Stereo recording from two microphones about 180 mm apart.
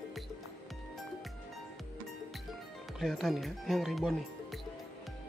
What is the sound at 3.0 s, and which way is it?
Speech, centre (ahead or behind).